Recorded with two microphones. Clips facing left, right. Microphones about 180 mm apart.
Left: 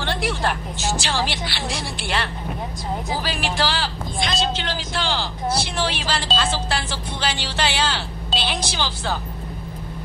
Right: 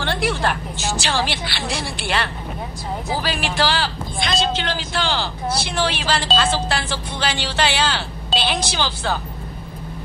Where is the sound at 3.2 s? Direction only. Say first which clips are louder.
Right 3 dB; 65° right (ahead or behind).